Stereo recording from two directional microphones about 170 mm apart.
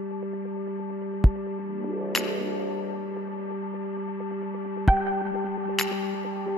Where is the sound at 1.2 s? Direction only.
Centre (ahead or behind).